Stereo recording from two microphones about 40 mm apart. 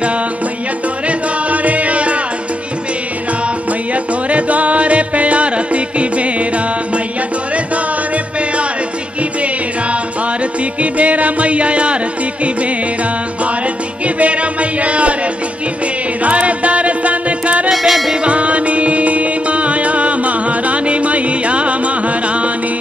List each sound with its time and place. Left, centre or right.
1.0 s music: right
3.9 s music: right
10.6 s music: right
14.0 s music: right
16.2 s music: right
17.6 s music: centre
18.2 s music: right